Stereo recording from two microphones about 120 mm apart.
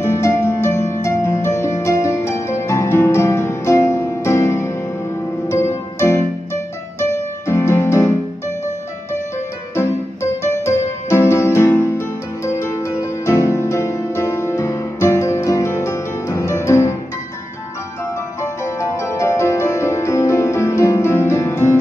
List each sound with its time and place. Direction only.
0.0 s music: 25° left (ahead or behind)
1.9 s harp: 25° left (ahead or behind)
2.6 s music: 25° left (ahead or behind)
10.4 s music: 25° left (ahead or behind)
18.4 s music: 25° left (ahead or behind)